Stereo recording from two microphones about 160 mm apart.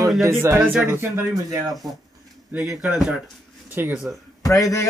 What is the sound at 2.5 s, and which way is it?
Speech, 10° right (ahead or behind).